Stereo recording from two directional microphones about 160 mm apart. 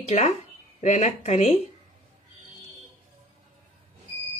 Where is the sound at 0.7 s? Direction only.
45° left (ahead or behind).